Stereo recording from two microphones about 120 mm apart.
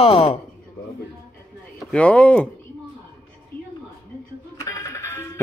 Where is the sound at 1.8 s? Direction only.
10° left (ahead or behind).